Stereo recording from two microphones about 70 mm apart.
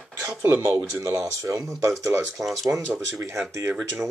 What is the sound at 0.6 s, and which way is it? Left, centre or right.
Speech, right.